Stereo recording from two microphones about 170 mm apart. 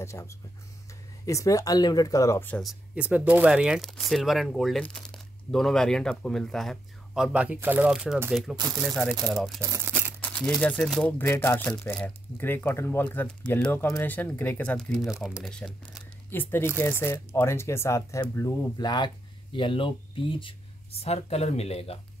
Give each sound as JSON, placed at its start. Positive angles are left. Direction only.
{"t": 0.0, "sound": "speech", "side_deg": 15}
{"t": 2.6, "sound": "speech", "side_deg": -5}
{"t": 9.6, "sound": "crumpling", "side_deg": -15}
{"t": 10.2, "sound": "speech", "side_deg": 5}
{"t": 16.3, "sound": "speech", "side_deg": 10}